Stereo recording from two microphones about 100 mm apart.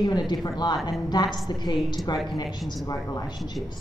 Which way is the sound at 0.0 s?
45° left (ahead or behind).